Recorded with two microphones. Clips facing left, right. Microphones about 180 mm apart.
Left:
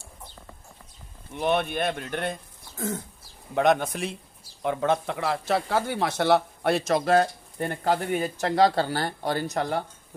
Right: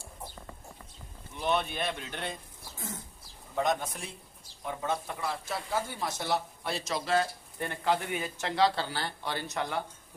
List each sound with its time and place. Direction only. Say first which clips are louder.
1.3 s speech: left 5 dB; 60° left (ahead or behind)
3.5 s speech: left 8 dB; 75° left (ahead or behind); by 9.8 s 40° left (ahead or behind)